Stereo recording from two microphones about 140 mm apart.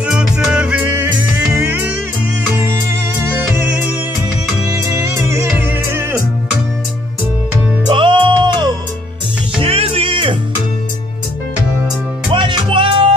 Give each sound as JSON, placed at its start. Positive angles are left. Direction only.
{"t": 0.0, "sound": "music", "side_deg": -5}
{"t": 7.9, "sound": "music", "side_deg": -35}
{"t": 12.3, "sound": "music", "side_deg": -35}